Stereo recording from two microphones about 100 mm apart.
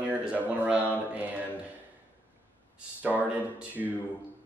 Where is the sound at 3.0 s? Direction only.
15° right (ahead or behind).